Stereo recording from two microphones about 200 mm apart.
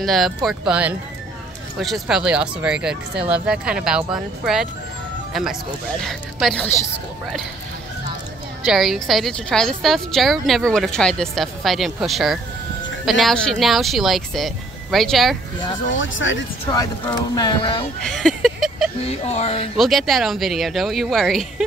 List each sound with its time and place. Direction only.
0.0 s a woman's voice: centre (ahead or behind)
8.6 s a woman's voice: centre (ahead or behind)
15.9 s speech: 70° left (ahead or behind)
16.7 s speech: 20° left (ahead or behind)
18.0 s a sound: centre (ahead or behind)
19.0 s speech: 30° left (ahead or behind)
19.8 s a woman's voice: centre (ahead or behind)